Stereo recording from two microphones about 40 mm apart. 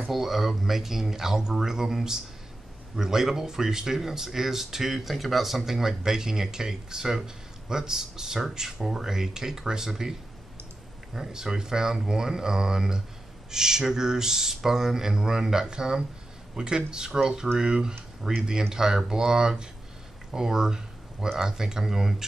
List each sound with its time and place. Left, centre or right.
0.1 s speech: centre
11.1 s speech: centre